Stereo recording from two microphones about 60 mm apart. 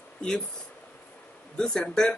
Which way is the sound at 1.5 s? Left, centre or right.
Centre.